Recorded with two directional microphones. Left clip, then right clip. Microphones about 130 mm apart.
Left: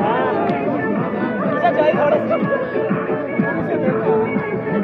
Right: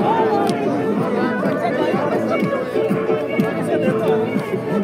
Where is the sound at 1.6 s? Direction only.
25° left (ahead or behind).